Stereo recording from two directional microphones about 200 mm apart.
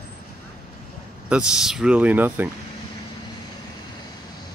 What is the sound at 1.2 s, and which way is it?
Speech, 5° right (ahead or behind).